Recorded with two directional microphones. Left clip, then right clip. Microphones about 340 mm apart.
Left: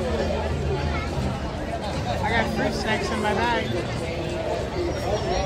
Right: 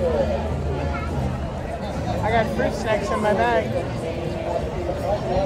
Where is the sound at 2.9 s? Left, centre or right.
Right.